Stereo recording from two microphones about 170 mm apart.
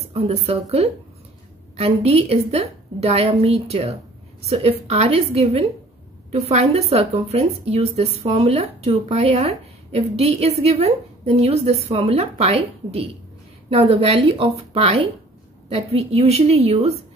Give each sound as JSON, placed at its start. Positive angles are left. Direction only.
{"t": 0.0, "sound": "speech", "side_deg": -35}